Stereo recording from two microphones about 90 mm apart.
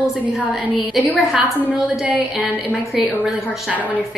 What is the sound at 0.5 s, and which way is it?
A woman's voice, centre (ahead or behind).